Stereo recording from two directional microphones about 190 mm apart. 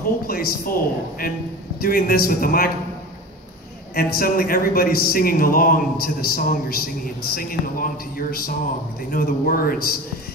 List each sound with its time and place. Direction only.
0.3 s speech: 50° left (ahead or behind)
1.8 s speech: 50° left (ahead or behind)
3.9 s speech: 50° left (ahead or behind)